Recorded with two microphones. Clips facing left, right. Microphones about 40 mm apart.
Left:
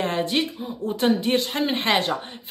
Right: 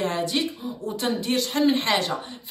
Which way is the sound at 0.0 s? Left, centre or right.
Left.